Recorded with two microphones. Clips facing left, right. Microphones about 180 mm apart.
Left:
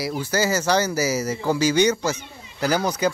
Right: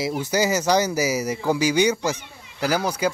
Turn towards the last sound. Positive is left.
turn(degrees=-10)  # may be behind; listen again after turning